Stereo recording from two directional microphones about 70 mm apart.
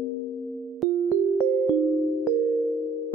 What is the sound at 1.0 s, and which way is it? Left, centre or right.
Keyboard, centre.